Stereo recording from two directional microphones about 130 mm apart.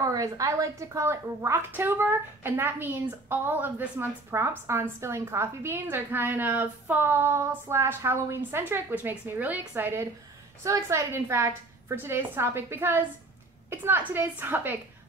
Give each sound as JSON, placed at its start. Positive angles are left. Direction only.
{"t": 0.0, "sound": "a woman's voice", "side_deg": -25}